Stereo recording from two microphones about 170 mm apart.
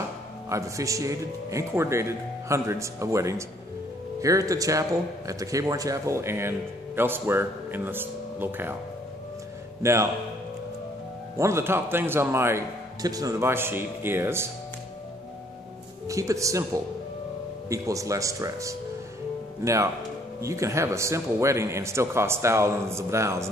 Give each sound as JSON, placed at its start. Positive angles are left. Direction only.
{"t": 0.5, "sound": "a man's voice", "side_deg": -20}
{"t": 9.8, "sound": "speech", "side_deg": -15}
{"t": 11.3, "sound": "speech", "side_deg": -15}
{"t": 16.1, "sound": "a man's voice", "side_deg": -20}